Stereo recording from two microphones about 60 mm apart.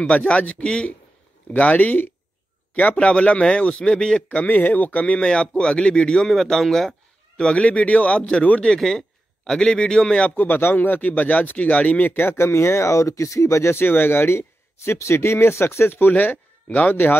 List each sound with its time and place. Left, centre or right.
0.0 s a man's voice: left
6.2 s a man's voice: centre
8.7 s a man's voice: centre
10.3 s speech: left
13.7 s speech: left